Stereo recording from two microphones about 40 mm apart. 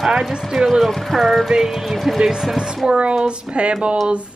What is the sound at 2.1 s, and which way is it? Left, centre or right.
Speech, centre.